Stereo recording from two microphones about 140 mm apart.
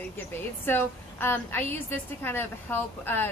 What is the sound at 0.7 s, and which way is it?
A woman's voice, 15° left (ahead or behind).